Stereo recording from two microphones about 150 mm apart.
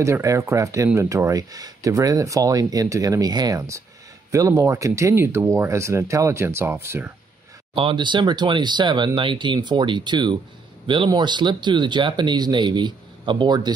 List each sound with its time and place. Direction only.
0.0 s speech: 20° right (ahead or behind)
7.7 s speech: 35° right (ahead or behind)